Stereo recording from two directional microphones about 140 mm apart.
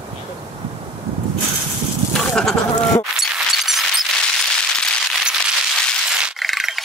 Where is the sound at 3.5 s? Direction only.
Centre (ahead or behind).